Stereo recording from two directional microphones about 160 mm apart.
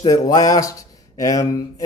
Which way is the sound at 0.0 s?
25° left (ahead or behind).